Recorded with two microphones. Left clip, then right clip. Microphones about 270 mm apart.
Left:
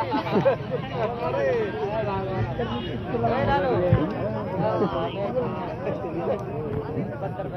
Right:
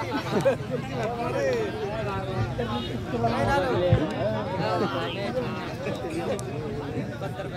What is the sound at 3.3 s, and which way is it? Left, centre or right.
Speech, right.